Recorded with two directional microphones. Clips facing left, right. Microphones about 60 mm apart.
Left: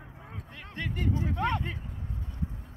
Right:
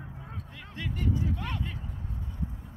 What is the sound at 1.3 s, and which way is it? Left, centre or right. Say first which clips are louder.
Speech: left 6 dB; left.